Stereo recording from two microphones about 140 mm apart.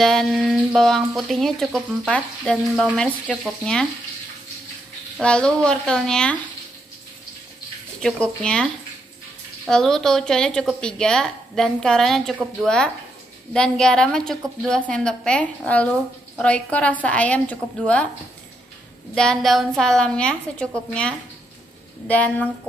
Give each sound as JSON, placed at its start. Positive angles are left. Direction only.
{"t": 0.0, "sound": "a woman's voice", "side_deg": 0}
{"t": 5.2, "sound": "a woman's voice", "side_deg": 5}
{"t": 8.0, "sound": "a woman's voice", "side_deg": 5}
{"t": 9.7, "sound": "a woman's voice", "side_deg": 5}
{"t": 19.1, "sound": "a woman's voice", "side_deg": 5}